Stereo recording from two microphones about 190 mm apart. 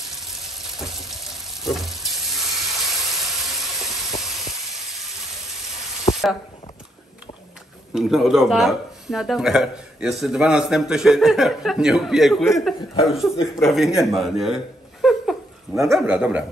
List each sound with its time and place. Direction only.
0.5 s frying: centre (ahead or behind)
6.1 s a sound: 35° left (ahead or behind)
7.9 s speech: centre (ahead or behind)